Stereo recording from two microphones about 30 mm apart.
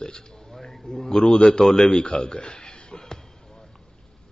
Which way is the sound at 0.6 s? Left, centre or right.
Centre.